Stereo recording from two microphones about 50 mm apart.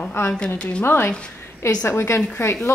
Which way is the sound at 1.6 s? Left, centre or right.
Left.